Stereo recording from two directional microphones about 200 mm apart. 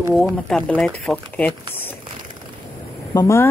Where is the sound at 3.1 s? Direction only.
15° left (ahead or behind).